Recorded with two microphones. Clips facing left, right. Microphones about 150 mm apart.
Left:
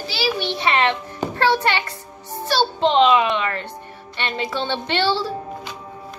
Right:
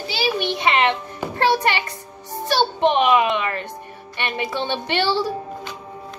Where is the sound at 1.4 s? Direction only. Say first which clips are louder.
Even; 15° right (ahead or behind).